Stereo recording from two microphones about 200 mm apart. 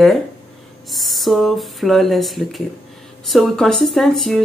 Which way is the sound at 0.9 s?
Centre (ahead or behind).